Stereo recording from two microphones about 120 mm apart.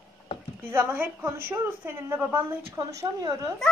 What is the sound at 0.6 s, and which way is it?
A man's voice, 20° right (ahead or behind).